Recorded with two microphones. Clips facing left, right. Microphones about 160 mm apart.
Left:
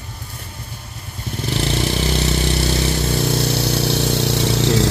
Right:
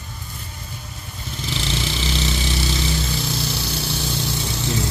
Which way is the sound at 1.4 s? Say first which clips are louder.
Left 6 dB; 55° left (ahead or behind).